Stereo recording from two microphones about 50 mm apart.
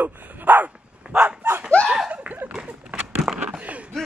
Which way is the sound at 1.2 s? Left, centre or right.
Right.